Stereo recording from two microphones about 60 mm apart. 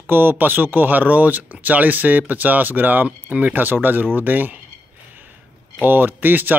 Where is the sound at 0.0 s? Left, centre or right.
Right.